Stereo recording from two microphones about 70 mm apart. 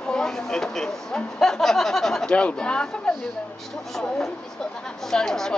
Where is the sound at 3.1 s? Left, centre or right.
Centre.